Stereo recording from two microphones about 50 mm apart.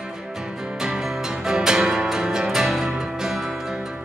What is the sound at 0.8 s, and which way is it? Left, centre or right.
Music, centre.